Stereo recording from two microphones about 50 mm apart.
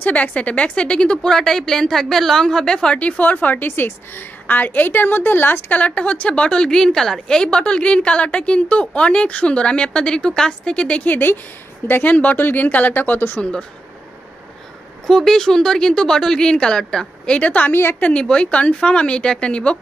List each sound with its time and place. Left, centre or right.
0.0 s a woman's voice: left
5.7 s a woman's voice: left
15.0 s speech: centre
17.4 s speech: left
17.7 s a woman's voice: left
18.2 s a woman's voice: centre